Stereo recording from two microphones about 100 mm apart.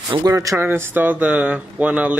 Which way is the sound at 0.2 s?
35° right (ahead or behind).